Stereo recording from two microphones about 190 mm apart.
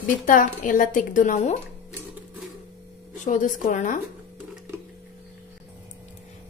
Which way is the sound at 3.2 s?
40° left (ahead or behind).